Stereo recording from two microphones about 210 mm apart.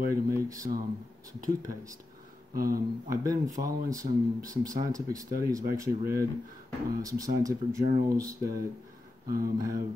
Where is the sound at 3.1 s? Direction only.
15° right (ahead or behind).